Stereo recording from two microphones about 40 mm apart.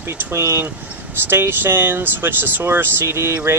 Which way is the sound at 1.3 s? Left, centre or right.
Right.